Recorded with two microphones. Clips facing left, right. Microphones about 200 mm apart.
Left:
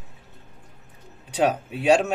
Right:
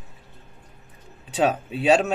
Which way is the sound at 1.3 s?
15° left (ahead or behind).